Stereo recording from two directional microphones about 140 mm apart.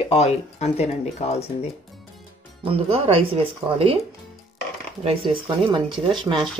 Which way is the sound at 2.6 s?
45° right (ahead or behind).